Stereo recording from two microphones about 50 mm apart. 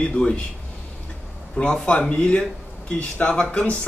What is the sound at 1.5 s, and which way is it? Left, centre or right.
Speech, centre.